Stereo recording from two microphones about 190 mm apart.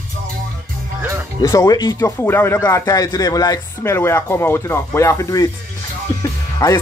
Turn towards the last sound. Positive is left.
turn(degrees=15)  # may be behind; listen again after turning